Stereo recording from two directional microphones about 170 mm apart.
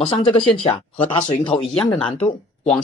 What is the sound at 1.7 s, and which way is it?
Speech, 5° left (ahead or behind).